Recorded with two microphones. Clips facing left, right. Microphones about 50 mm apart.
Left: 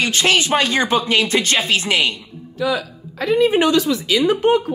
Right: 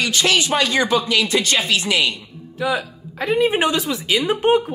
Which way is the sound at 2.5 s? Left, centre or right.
Right.